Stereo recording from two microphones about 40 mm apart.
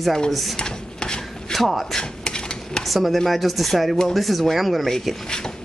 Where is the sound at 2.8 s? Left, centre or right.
Centre.